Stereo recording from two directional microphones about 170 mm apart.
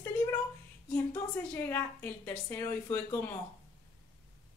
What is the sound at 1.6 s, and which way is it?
A woman's voice, 15° left (ahead or behind).